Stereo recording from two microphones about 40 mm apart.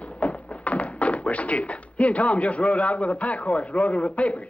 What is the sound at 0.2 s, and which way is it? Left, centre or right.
Speech, left.